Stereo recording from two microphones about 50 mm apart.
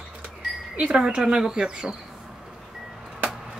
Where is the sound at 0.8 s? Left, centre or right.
Centre.